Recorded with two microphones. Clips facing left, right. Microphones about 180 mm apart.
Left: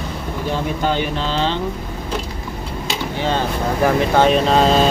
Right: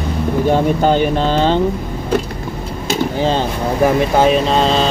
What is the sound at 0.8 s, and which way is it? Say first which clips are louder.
Speech: right 6 dB; 45° right (ahead or behind).